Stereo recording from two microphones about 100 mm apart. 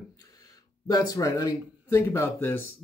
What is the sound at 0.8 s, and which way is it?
Speech, 40° left (ahead or behind).